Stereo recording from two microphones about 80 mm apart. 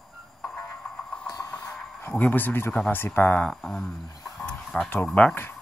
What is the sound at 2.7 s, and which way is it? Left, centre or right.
Speech, centre.